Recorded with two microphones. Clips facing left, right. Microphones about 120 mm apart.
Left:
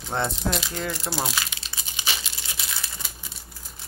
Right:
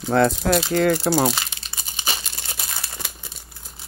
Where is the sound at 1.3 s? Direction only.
40° right (ahead or behind).